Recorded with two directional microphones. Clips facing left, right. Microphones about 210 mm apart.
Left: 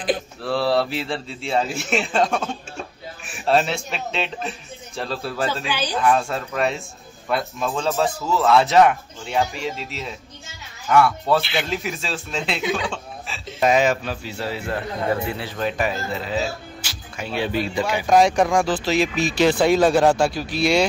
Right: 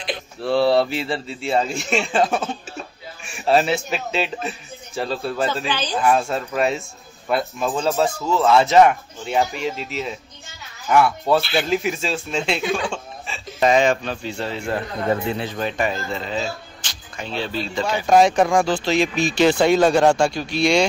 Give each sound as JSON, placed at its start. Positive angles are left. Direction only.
{"t": 0.4, "sound": "speech", "side_deg": 0}
{"t": 5.7, "sound": "speech", "side_deg": 10}
{"t": 5.9, "sound": "speech", "side_deg": 0}
{"t": 15.2, "sound": "a man's voice", "side_deg": -20}
{"t": 15.6, "sound": "speech", "side_deg": 5}
{"t": 18.0, "sound": "speech", "side_deg": 0}